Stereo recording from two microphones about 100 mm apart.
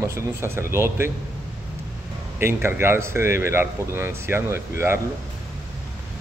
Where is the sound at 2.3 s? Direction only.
25° right (ahead or behind).